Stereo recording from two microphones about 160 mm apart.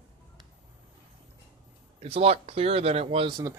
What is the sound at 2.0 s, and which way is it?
Speech, 40° right (ahead or behind).